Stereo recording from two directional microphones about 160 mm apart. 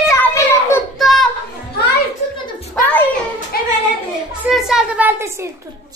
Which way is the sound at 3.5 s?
70° left (ahead or behind).